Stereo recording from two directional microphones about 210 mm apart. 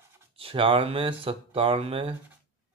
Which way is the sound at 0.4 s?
25° right (ahead or behind).